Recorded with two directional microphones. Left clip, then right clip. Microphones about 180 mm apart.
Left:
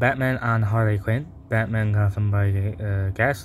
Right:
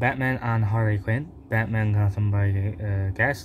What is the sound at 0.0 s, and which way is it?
Speech, 15° left (ahead or behind).